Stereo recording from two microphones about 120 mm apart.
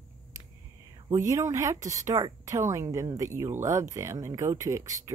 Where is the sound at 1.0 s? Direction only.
25° right (ahead or behind).